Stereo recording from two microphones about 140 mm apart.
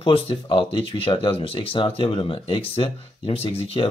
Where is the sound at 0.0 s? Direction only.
40° left (ahead or behind).